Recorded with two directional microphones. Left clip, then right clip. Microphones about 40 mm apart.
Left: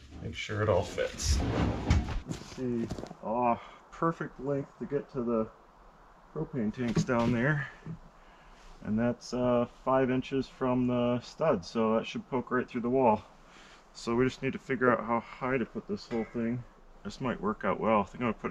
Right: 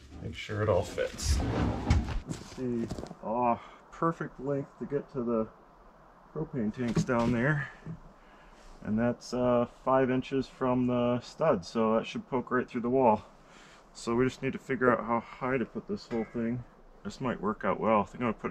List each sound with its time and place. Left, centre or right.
0.1 s speech: centre
1.4 s a sound: centre
2.2 s speech: centre